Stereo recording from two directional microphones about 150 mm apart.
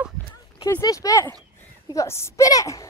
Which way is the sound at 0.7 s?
20° left (ahead or behind).